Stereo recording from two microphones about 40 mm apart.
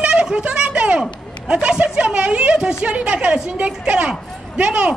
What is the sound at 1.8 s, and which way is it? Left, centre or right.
Speech, right.